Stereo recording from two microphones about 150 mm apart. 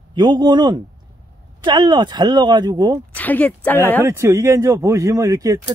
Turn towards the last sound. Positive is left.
turn(degrees=-25)  # may be behind; listen again after turning